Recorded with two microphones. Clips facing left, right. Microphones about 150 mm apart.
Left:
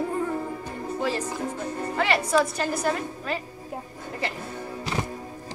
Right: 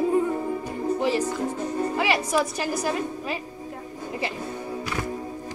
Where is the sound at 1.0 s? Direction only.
15° right (ahead or behind).